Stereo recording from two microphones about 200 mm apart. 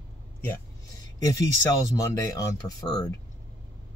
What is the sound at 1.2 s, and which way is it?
Speech, 15° left (ahead or behind).